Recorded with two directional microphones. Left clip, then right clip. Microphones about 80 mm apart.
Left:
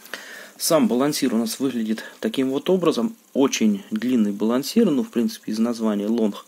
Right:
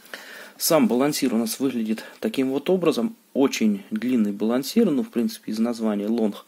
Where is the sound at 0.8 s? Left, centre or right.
Centre.